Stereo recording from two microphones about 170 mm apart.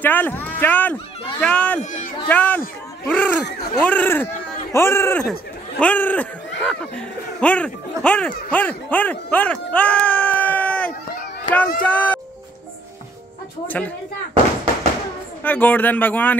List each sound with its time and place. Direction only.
0.0 s speech: 10° left (ahead or behind)
13.7 s speech: 10° left (ahead or behind)
14.3 s a sound: 35° right (ahead or behind)
15.4 s speech: 10° left (ahead or behind)